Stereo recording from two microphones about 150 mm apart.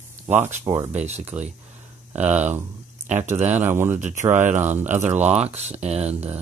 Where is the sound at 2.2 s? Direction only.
15° right (ahead or behind).